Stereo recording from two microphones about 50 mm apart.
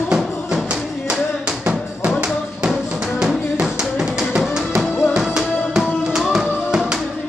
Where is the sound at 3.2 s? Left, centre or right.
Centre.